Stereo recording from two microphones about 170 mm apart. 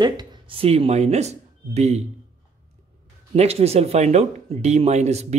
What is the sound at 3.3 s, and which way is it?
Speech, 40° right (ahead or behind).